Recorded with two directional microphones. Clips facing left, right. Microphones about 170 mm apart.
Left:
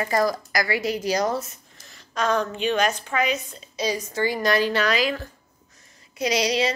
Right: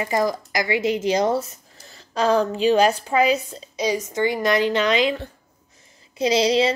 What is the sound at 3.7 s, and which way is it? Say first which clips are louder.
Speech: right 3 dB; 15° right (ahead or behind).